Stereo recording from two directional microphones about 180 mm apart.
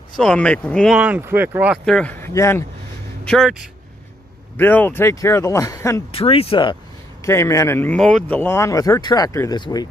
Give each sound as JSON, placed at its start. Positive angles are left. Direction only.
{"t": 0.2, "sound": "speech", "side_deg": 5}
{"t": 0.9, "sound": "speech", "side_deg": -10}
{"t": 1.9, "sound": "speech", "side_deg": 5}
{"t": 3.3, "sound": "speech", "side_deg": 0}
{"t": 4.6, "sound": "speech", "side_deg": 10}
{"t": 6.1, "sound": "speech", "side_deg": 30}
{"t": 7.2, "sound": "speech", "side_deg": 15}